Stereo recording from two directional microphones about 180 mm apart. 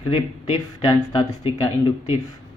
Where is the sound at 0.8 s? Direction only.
20° left (ahead or behind).